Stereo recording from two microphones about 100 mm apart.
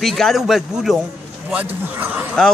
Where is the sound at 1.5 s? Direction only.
15° right (ahead or behind).